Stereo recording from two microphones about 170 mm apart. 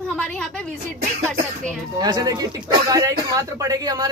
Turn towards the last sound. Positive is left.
turn(degrees=-20)  # may be behind; listen again after turning